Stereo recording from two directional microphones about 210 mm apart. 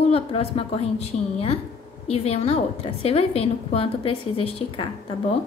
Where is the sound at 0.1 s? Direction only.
25° left (ahead or behind).